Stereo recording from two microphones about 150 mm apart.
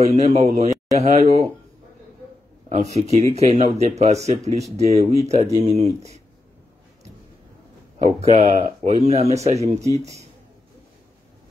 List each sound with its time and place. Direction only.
0.0 s speech: 45° right (ahead or behind)
2.7 s speech: 45° right (ahead or behind)
8.0 s speech: 45° right (ahead or behind)
9.8 s speech: 20° right (ahead or behind)